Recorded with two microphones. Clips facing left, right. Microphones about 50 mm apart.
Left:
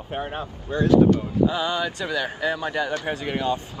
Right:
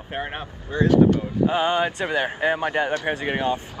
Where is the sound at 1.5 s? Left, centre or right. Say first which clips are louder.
Right 4 dB; right.